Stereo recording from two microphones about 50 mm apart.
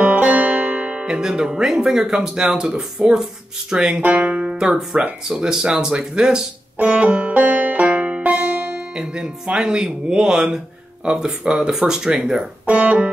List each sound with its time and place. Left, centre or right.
0.0 s music: right
1.2 s speech: centre
4.0 s speech: right
4.6 s speech: centre
7.3 s banjo: right; by 10.6 s centre
11.1 s speech: centre
12.6 s speech: right